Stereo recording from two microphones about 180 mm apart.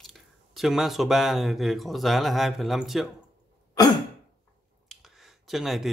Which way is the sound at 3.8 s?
20° left (ahead or behind).